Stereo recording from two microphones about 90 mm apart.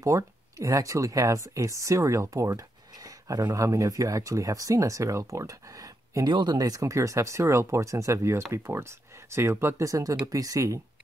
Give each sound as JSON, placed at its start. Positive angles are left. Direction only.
{"t": 0.0, "sound": "speech", "side_deg": -40}
{"t": 6.2, "sound": "speech", "side_deg": -55}